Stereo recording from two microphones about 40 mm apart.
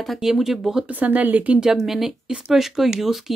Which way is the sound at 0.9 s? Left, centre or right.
Right.